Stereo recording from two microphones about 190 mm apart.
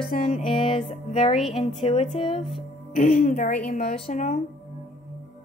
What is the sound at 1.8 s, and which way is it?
Speech, 30° left (ahead or behind).